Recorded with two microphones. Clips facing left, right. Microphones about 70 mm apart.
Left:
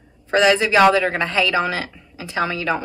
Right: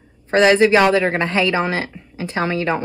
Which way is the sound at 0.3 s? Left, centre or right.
Right.